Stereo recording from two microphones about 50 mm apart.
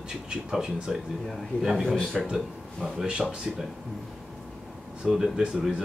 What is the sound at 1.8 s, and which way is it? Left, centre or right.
Speech, centre.